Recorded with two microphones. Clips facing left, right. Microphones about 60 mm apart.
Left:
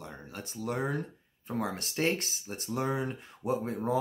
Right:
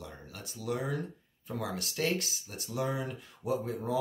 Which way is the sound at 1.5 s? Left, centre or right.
Left.